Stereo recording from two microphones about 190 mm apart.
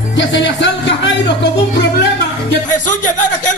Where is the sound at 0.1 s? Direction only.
75° left (ahead or behind).